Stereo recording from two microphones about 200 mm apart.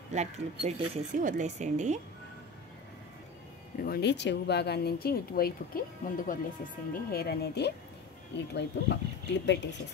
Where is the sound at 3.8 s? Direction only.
55° left (ahead or behind).